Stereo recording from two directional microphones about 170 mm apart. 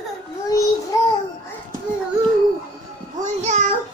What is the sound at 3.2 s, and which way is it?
Speech, 45° right (ahead or behind).